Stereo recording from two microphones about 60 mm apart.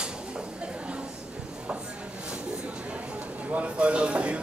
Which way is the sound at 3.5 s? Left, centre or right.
Right.